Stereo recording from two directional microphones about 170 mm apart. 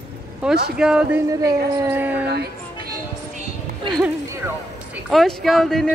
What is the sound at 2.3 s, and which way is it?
Music, 75° right (ahead or behind).